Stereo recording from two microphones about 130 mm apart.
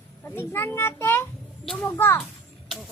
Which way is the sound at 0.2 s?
15° left (ahead or behind).